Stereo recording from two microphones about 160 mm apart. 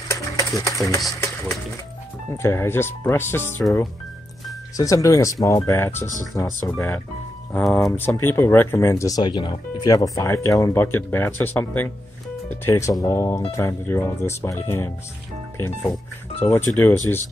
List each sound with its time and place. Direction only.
0.1 s music: 20° left (ahead or behind)
2.3 s speech: 15° left (ahead or behind)
4.7 s speech: 20° left (ahead or behind)